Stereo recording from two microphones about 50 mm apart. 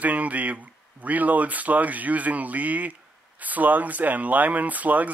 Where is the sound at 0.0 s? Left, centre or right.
Right.